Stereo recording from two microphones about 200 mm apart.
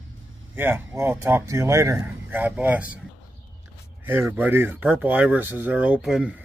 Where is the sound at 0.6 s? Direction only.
10° right (ahead or behind).